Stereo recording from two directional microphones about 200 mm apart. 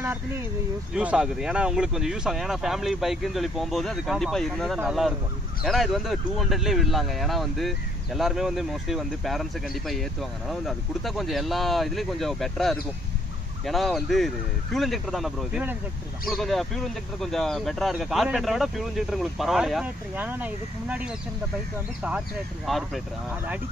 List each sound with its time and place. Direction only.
0.9 s speech: 5° right (ahead or behind)